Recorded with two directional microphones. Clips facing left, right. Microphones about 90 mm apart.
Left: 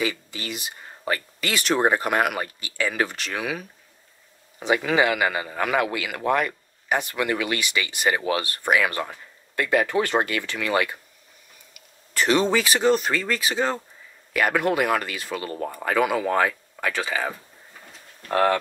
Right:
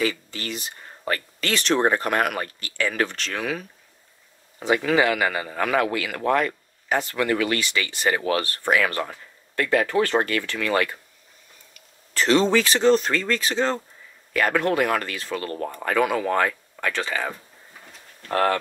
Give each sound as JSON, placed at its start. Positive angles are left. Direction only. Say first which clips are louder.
{"t": 0.0, "sound": "a man's voice", "louder": "right 2 dB", "side_deg": 15}
{"t": 18.3, "sound": "a man's voice", "louder": "left 1 dB", "side_deg": 15}